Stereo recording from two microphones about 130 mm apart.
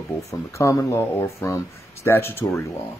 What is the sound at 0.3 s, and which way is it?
Speech, 25° left (ahead or behind).